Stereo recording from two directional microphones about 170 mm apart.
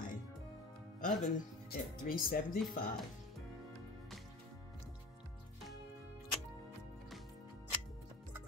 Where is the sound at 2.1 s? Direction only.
60° left (ahead or behind).